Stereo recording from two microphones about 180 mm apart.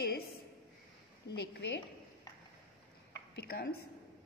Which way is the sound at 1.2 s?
65° left (ahead or behind).